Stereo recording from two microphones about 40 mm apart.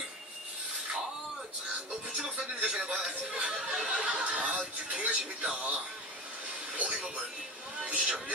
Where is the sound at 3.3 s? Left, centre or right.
Right.